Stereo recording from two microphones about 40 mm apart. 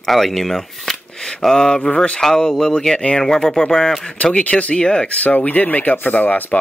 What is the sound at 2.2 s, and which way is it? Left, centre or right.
Speech, centre.